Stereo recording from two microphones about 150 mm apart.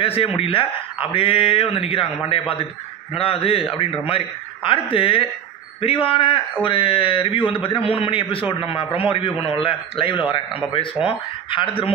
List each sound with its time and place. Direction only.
0.0 s a man's voice: 40° left (ahead or behind)